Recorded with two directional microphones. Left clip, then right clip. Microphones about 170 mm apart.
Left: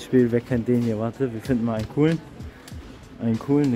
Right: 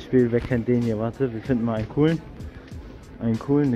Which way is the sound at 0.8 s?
Centre (ahead or behind).